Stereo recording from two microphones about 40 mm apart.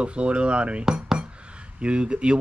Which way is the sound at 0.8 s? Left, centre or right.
Centre.